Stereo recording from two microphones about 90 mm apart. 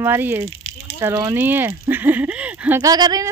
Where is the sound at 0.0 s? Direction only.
25° right (ahead or behind).